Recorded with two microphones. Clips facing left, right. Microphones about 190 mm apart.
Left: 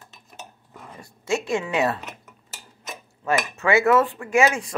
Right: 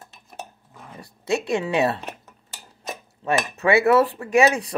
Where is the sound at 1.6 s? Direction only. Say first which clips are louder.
Right 2 dB; 30° right (ahead or behind).